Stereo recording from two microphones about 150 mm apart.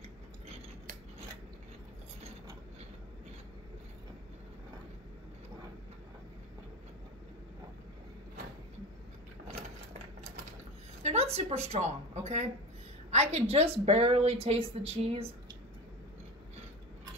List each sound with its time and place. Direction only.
11.0 s a woman's voice: 45° right (ahead or behind)